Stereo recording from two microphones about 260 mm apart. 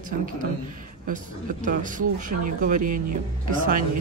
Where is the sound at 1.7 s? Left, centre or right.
Right.